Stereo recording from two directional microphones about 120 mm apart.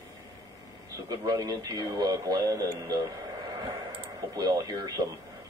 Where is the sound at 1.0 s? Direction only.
35° right (ahead or behind).